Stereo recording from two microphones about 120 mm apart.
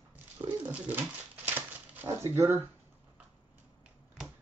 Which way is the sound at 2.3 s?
25° right (ahead or behind).